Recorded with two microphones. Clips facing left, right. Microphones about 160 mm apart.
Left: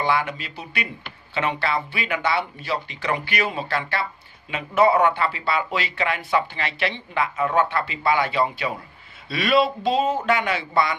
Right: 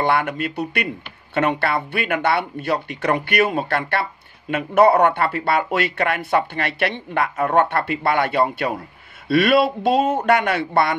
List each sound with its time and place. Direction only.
0.0 s speech: 55° right (ahead or behind)